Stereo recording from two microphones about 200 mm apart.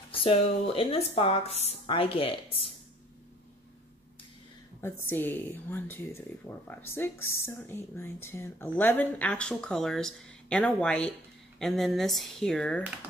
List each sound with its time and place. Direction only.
0.1 s speech: 30° left (ahead or behind)
5.0 s speech: 10° left (ahead or behind)